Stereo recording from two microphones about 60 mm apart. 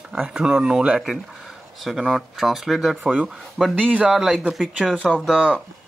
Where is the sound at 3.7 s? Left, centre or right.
Right.